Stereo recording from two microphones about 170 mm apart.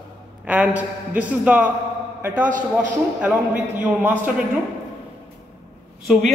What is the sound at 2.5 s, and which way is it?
Speech, 50° right (ahead or behind).